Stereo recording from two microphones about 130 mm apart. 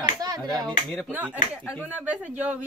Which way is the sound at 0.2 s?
30° right (ahead or behind).